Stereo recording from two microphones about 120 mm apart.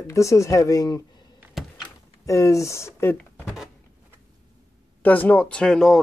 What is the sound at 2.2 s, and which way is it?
Speech, 25° left (ahead or behind).